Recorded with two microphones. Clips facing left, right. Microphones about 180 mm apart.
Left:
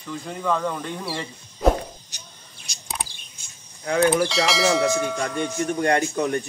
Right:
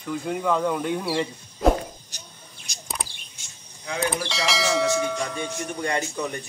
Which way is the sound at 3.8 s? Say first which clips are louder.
Left 8 dB; 60° left (ahead or behind).